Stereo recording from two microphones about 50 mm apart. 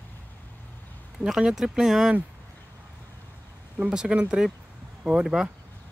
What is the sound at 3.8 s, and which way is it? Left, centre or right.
Speech, centre.